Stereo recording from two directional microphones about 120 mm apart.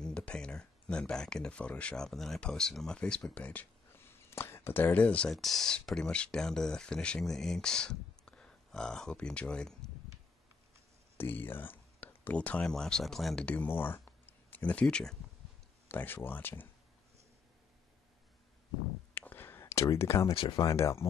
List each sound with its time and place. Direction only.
0.0 s speech: 10° left (ahead or behind)
11.1 s speech: 15° left (ahead or behind)
19.1 s a sound: 15° left (ahead or behind)
20.3 s speech: 45° left (ahead or behind)
20.8 s speech: 25° left (ahead or behind)